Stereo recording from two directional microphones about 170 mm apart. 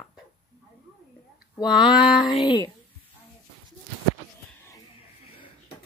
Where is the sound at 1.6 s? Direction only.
25° left (ahead or behind).